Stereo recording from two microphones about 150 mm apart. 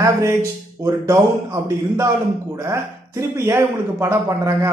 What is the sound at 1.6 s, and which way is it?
Speech, 20° right (ahead or behind).